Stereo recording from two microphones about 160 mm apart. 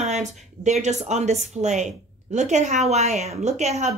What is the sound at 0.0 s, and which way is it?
A woman's voice, 45° right (ahead or behind).